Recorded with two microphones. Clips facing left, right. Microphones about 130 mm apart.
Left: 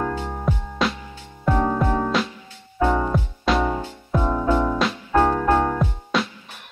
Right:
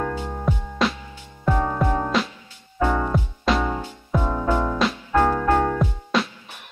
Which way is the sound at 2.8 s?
15° left (ahead or behind).